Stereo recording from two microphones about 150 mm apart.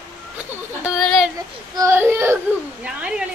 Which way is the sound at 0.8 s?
Centre (ahead or behind).